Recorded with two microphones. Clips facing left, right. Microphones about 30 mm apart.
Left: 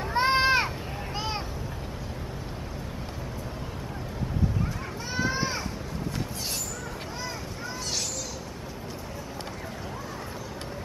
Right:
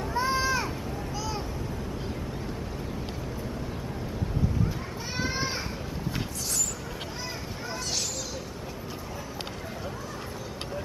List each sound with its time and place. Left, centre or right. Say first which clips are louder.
0.1 s sheep: left 5 dB; left
5.1 s children playing: left 3 dB; centre